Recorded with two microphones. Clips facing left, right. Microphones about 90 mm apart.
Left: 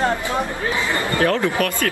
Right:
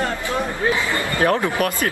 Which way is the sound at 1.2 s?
20° right (ahead or behind).